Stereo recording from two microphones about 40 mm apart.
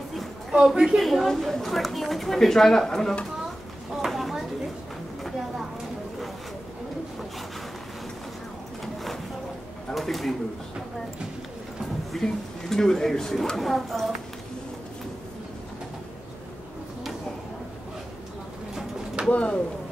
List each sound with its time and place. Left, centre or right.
0.5 s a woman's voice: right
0.9 s a woman's voice: centre
3.9 s a sound: centre
8.8 s a sound: centre
9.9 s speech: centre
12.1 s a woman's voice: centre
19.3 s speech: left